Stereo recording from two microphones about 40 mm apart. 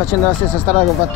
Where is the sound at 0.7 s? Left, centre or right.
Left.